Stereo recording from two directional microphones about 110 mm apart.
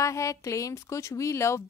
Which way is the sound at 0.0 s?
30° left (ahead or behind).